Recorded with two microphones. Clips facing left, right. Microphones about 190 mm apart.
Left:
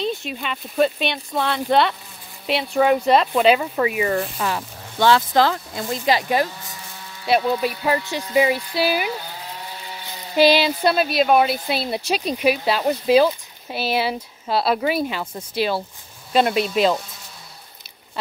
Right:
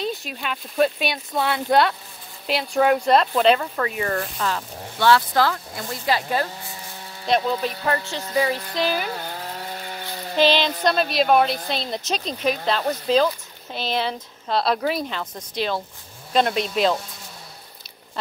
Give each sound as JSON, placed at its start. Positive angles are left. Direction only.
{"t": 0.0, "sound": "a woman's voice", "side_deg": 0}
{"t": 9.8, "sound": "chainsaw", "side_deg": -55}
{"t": 10.3, "sound": "a woman's voice", "side_deg": 10}